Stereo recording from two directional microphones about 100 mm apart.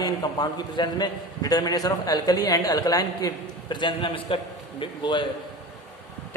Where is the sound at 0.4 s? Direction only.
45° left (ahead or behind).